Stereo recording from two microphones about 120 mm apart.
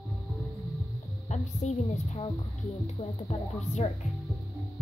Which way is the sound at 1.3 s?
75° left (ahead or behind).